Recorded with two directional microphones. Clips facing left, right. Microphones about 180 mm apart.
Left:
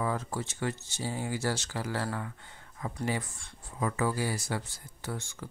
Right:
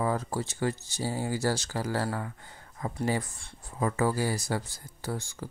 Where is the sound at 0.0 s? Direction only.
35° right (ahead or behind).